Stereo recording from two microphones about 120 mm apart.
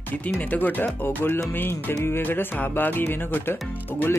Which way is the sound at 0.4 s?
15° left (ahead or behind).